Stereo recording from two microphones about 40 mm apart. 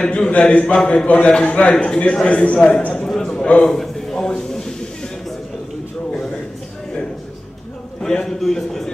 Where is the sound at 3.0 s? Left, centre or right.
Centre.